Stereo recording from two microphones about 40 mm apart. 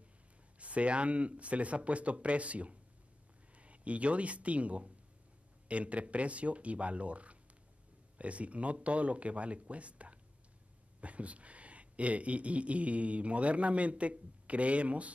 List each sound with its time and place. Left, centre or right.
0.6 s speech: right